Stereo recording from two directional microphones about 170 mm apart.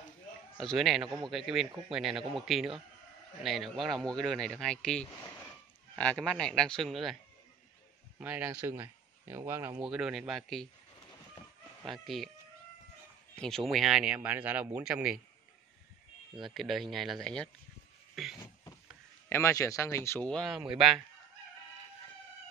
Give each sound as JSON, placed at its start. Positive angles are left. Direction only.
{"t": 0.6, "sound": "speech", "side_deg": 0}
{"t": 8.2, "sound": "speech", "side_deg": -10}
{"t": 9.8, "sound": "speech", "side_deg": -5}
{"t": 11.8, "sound": "speech", "side_deg": 0}
{"t": 13.4, "sound": "speech", "side_deg": 5}
{"t": 16.4, "sound": "speech", "side_deg": 0}
{"t": 19.2, "sound": "speech", "side_deg": 15}
{"t": 20.2, "sound": "speech", "side_deg": 0}